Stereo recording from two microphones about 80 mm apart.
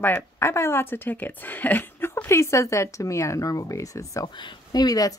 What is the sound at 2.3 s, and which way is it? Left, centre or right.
Speech, left.